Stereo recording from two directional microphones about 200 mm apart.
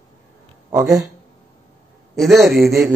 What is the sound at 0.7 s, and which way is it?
Speech, 15° right (ahead or behind).